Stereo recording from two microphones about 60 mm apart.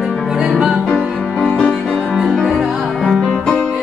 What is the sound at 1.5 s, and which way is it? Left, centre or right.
Music, centre.